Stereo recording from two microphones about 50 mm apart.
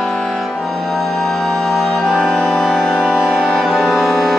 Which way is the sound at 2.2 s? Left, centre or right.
Centre.